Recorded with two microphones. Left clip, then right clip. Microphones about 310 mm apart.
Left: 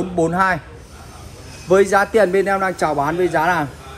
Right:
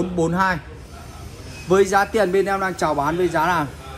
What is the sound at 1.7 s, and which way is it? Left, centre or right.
Speech, centre.